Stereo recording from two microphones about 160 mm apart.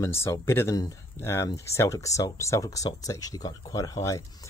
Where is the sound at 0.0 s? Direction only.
15° left (ahead or behind).